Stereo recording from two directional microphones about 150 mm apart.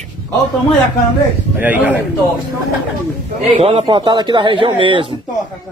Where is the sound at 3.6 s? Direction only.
35° right (ahead or behind).